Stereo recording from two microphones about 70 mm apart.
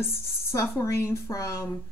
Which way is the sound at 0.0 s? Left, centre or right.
Left.